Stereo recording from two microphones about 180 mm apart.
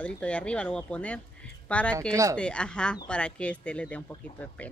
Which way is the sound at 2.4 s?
5° left (ahead or behind).